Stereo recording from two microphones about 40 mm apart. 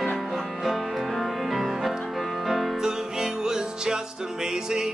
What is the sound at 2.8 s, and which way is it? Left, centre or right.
Music, centre.